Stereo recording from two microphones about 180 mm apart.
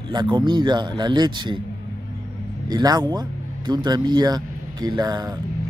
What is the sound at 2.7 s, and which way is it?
Speech, 20° right (ahead or behind).